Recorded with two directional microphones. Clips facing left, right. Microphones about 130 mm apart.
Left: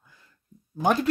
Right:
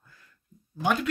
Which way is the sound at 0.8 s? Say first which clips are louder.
Left 3 dB; 40° left (ahead or behind).